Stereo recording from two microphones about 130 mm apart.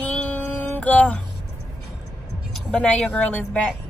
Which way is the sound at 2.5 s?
5° left (ahead or behind).